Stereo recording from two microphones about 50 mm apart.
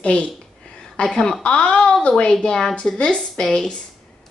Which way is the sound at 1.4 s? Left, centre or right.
Left.